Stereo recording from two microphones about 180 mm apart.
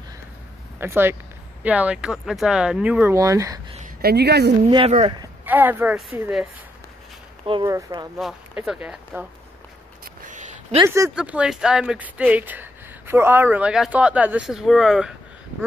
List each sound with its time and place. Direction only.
0.7 s speech: 10° right (ahead or behind)
4.0 s speech: 65° right (ahead or behind)
4.6 s speech: 30° right (ahead or behind)
5.4 s speech: 10° right (ahead or behind)
7.4 s speech: 30° right (ahead or behind)
8.2 s speech: 5° right (ahead or behind)
10.2 s a sound: 45° right (ahead or behind)
11.1 s speech: 5° right (ahead or behind)